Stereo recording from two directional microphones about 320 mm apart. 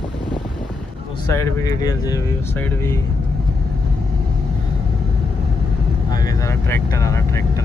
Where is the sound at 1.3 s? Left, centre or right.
Centre.